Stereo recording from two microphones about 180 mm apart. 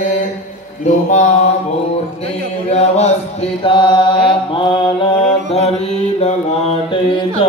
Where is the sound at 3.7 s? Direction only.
25° left (ahead or behind).